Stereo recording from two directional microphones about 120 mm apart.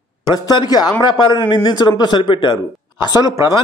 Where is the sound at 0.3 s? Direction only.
35° left (ahead or behind).